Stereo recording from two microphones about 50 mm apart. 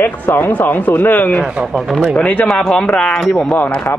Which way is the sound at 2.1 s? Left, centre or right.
Left.